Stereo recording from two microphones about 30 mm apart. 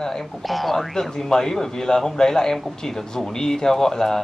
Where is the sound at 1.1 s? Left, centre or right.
Centre.